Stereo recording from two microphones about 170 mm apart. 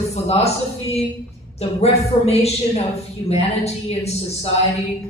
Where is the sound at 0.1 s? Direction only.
40° left (ahead or behind).